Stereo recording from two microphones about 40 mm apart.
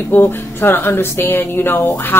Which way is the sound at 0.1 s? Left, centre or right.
Left.